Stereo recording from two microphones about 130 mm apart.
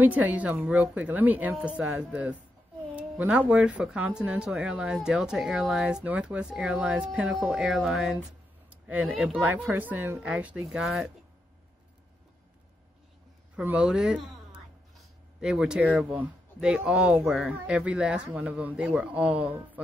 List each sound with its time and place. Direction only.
0.0 s speech: 10° right (ahead or behind)
8.6 s a sound: 15° right (ahead or behind)
9.0 s speech: 5° right (ahead or behind)
13.6 s speech: 10° right (ahead or behind)
15.4 s speech: 5° right (ahead or behind)